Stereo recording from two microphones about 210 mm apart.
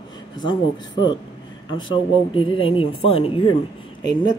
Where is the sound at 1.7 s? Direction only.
20° left (ahead or behind).